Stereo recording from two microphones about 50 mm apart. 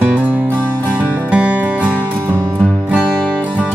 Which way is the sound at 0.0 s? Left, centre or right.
Right.